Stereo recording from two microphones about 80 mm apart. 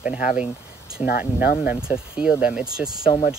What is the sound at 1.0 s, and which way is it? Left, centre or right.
Speech, right.